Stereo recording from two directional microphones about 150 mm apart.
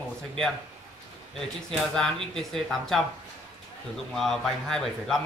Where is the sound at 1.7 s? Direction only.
5° left (ahead or behind).